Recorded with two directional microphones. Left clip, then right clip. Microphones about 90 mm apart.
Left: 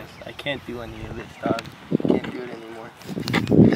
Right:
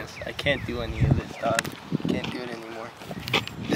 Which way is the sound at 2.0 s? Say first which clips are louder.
Left 5 dB; 15° right (ahead or behind).